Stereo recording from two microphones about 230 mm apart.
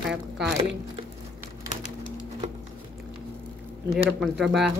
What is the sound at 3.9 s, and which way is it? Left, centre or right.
Speech, centre.